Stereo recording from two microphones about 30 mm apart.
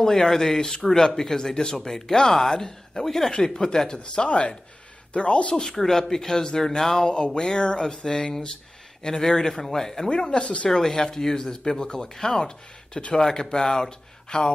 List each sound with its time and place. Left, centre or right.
0.0 s speech: centre
4.0 s speech: left
5.8 s speech: centre
10.0 s speech: left
11.1 s speech: centre